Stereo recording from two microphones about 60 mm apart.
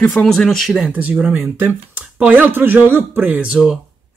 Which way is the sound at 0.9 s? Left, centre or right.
Right.